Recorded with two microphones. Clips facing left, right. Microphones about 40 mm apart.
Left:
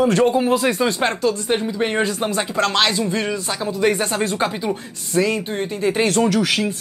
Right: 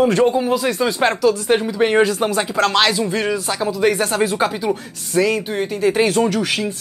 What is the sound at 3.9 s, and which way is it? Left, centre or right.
Speech, centre.